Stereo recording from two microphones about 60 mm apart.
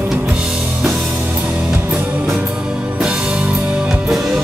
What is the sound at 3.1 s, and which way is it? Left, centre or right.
Music, centre.